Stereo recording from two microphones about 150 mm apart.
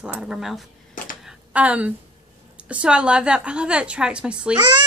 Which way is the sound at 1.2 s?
10° right (ahead or behind).